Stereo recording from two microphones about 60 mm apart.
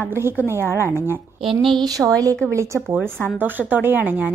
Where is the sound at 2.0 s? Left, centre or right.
Right.